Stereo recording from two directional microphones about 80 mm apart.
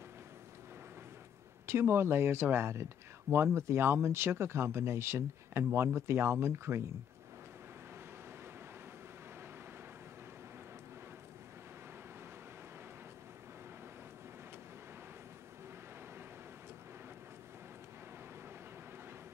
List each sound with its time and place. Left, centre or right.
1.7 s speech: right